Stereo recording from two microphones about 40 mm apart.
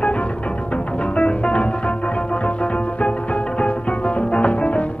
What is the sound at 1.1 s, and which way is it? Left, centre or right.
Music, left.